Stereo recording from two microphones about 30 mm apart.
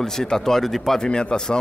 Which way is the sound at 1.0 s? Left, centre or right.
Left.